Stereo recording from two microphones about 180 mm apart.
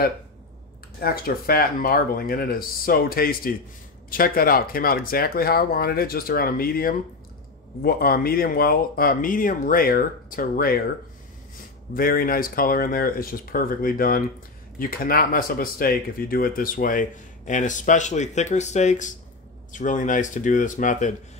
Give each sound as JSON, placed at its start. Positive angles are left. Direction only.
{"t": 0.9, "sound": "speech", "side_deg": 55}
{"t": 11.9, "sound": "speech", "side_deg": 55}